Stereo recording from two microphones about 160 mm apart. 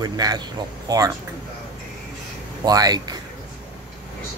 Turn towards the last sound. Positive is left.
turn(degrees=-25)  # may be behind; listen again after turning